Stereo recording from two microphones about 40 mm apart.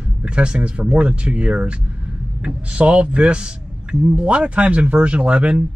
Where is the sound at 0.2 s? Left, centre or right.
Right.